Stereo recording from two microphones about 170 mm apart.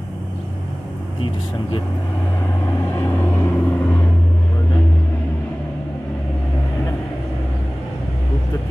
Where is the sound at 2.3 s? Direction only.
15° left (ahead or behind).